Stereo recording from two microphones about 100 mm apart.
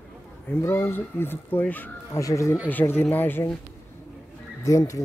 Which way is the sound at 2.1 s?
30° left (ahead or behind).